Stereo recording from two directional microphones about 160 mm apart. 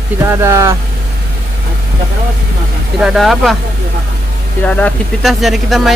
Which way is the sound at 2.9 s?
Centre (ahead or behind).